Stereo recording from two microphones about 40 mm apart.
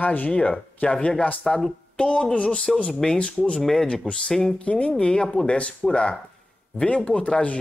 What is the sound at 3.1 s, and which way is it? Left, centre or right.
Speech, left.